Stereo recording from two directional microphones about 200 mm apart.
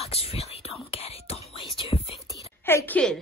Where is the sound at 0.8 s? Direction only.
30° left (ahead or behind).